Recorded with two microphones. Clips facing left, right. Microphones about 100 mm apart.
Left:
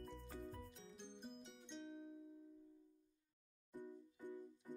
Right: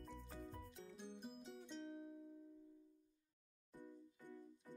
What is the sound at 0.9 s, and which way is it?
Music, 5° right (ahead or behind).